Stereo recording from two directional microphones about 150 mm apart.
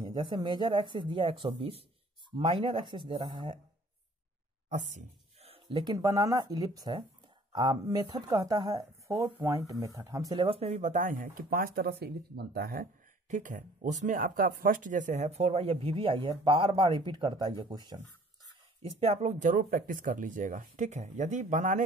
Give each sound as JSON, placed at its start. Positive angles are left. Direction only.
{"t": 0.1, "sound": "speech", "side_deg": -30}
{"t": 4.6, "sound": "speech", "side_deg": -55}
{"t": 10.4, "sound": "speech", "side_deg": -40}
{"t": 11.3, "sound": "speech", "side_deg": -75}
{"t": 13.3, "sound": "speech", "side_deg": -60}
{"t": 18.8, "sound": "speech", "side_deg": -40}